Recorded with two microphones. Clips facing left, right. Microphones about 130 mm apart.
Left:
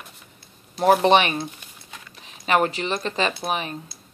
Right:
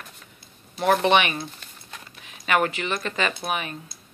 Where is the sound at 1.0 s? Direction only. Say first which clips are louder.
Left 3 dB; 35° left (ahead or behind).